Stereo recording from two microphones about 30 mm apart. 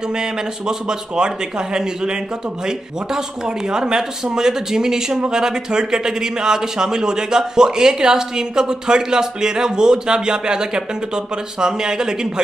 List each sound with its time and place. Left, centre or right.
0.1 s speech: right